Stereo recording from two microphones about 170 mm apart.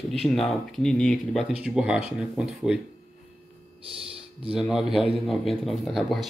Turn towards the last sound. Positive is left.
turn(degrees=0)  # may be behind; listen again after turning